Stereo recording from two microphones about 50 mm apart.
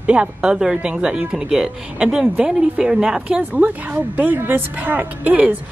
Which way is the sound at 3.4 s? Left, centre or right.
Right.